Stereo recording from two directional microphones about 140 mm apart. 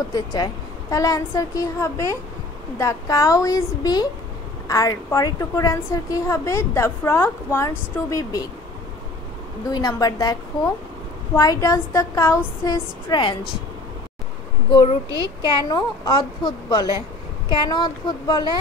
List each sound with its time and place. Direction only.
0.1 s a woman's voice: 30° left (ahead or behind)
9.7 s a woman's voice: 30° left (ahead or behind)
11.3 s a woman's voice: 25° left (ahead or behind)
12.6 s a woman's voice: 35° left (ahead or behind)
14.7 s a woman's voice: 35° left (ahead or behind)